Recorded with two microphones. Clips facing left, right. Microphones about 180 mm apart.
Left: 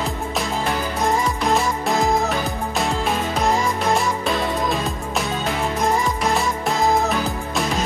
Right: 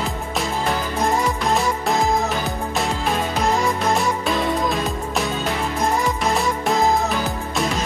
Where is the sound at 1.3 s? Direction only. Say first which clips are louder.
Even; centre (ahead or behind).